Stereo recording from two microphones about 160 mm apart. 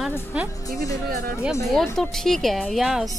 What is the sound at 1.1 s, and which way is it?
Speech, 70° right (ahead or behind).